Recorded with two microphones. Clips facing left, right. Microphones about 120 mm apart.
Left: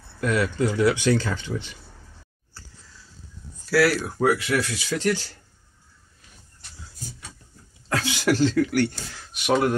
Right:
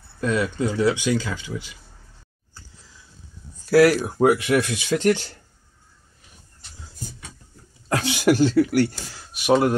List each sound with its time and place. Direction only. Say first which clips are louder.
0.2 s speech: even; 20° right (ahead or behind)
1.0 s speech: left 1 dB; 10° right (ahead or behind)
2.5 s a sound: even; 15° right (ahead or behind)
3.7 s speech: right 5 dB; 20° right (ahead or behind)
7.9 s speech: right 4 dB; 15° right (ahead or behind)